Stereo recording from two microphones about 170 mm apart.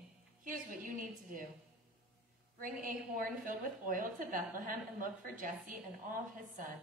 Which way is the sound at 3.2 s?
55° right (ahead or behind).